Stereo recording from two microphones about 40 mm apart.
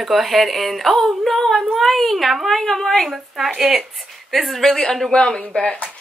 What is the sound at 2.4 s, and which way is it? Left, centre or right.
Speech, centre.